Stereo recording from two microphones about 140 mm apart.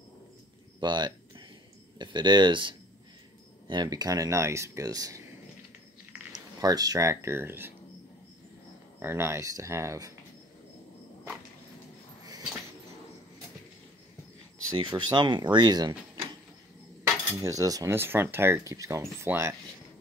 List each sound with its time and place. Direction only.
0.7 s a sound: 30° right (ahead or behind)
2.0 s speech: 35° right (ahead or behind)
6.3 s speech: 25° right (ahead or behind)
9.0 s speech: 20° right (ahead or behind)
14.8 s speech: 35° right (ahead or behind)
17.3 s speech: 20° right (ahead or behind)